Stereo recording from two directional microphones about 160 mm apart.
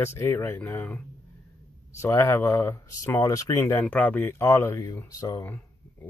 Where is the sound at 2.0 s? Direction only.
15° left (ahead or behind).